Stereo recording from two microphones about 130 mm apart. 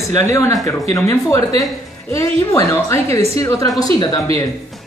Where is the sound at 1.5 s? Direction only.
50° right (ahead or behind).